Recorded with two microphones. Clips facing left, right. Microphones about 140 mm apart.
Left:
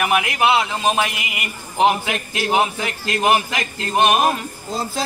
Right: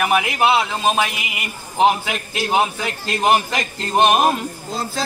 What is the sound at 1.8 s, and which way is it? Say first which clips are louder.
Speech: right 1 dB; 20° right (ahead or behind).